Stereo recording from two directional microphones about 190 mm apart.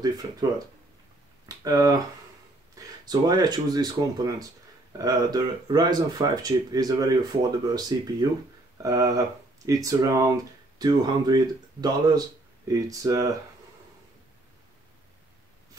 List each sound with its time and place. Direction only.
1.6 s speech: 20° right (ahead or behind)